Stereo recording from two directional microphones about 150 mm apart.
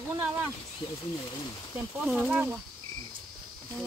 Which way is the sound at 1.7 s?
5° right (ahead or behind).